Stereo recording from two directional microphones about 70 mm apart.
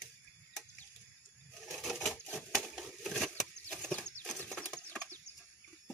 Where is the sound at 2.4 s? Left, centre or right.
Centre.